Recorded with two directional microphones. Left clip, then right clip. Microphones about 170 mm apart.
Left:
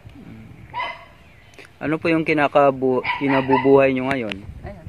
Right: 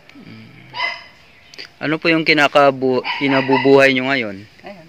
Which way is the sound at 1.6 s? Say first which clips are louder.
Right 3 dB; 5° right (ahead or behind).